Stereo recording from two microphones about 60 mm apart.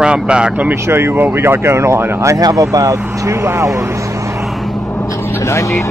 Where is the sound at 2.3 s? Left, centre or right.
Right.